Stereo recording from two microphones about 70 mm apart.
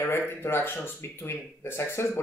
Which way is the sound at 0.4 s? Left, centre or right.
Left.